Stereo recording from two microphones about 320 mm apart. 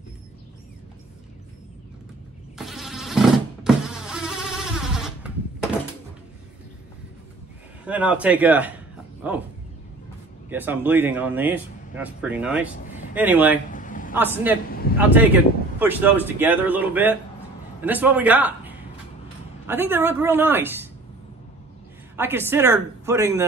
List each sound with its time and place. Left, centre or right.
2.5 s power windows: centre
7.8 s speech: centre
10.5 s speech: centre
13.7 s a sound: left
15.0 s a man's voice: centre
22.1 s a woman's voice: centre